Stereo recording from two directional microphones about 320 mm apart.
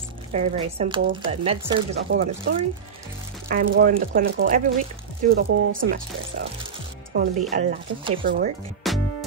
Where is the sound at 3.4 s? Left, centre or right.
Right.